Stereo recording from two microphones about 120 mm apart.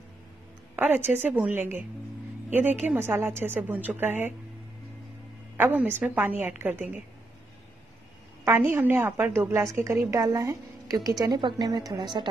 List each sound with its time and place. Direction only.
0.7 s a woman's voice: 15° right (ahead or behind)
5.6 s a woman's voice: 15° right (ahead or behind)
8.5 s a woman's voice: 15° right (ahead or behind); by 12.3 s 40° right (ahead or behind)